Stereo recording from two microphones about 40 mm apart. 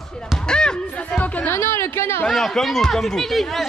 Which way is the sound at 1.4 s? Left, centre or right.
Left.